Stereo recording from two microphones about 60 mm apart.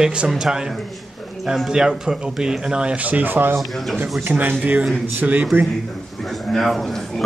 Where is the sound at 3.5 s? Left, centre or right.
Centre.